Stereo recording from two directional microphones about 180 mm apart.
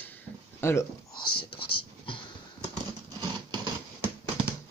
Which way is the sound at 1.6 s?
30° left (ahead or behind).